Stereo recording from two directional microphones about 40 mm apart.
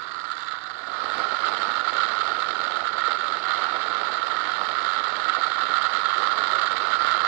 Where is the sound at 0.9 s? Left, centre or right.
Centre.